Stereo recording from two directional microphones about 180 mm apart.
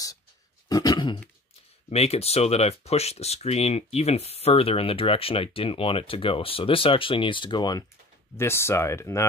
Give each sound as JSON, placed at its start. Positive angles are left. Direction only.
{"t": 0.7, "sound": "grunt", "side_deg": 20}
{"t": 1.9, "sound": "speech", "side_deg": 35}